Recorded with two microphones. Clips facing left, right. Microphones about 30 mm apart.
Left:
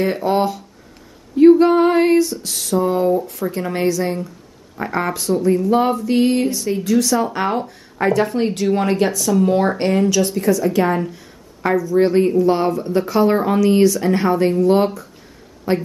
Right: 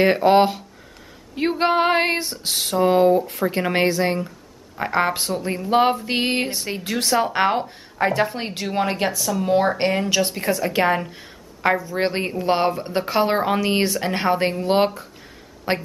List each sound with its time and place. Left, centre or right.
0.0 s a woman's voice: right
4.7 s speech: right
5.0 s a woman's voice: right
8.0 s speech: centre
10.0 s a woman's voice: right